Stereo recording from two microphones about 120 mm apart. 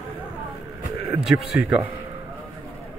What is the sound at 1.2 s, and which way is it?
Speech, 5° right (ahead or behind).